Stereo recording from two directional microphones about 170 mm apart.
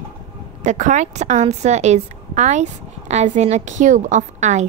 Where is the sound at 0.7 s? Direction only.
45° right (ahead or behind).